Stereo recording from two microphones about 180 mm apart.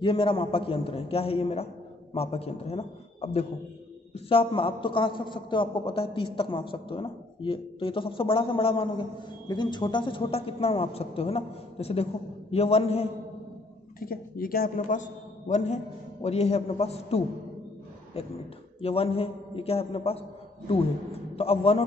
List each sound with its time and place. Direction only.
0.0 s a man's voice: 30° left (ahead or behind)
13.9 s a man's voice: 55° left (ahead or behind); by 21.8 s 35° left (ahead or behind)